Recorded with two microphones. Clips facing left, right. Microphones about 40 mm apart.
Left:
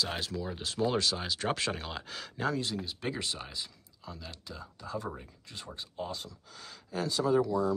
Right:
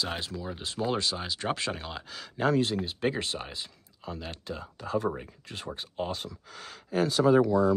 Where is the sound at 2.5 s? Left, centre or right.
Right.